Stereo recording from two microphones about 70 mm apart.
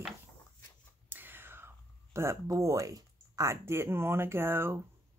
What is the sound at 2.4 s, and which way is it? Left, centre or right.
Speech, right.